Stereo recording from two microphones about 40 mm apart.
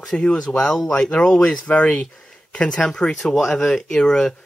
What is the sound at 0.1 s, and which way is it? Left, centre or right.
Speech, left.